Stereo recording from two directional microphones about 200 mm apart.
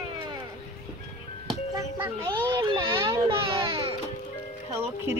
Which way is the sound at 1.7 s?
20° right (ahead or behind).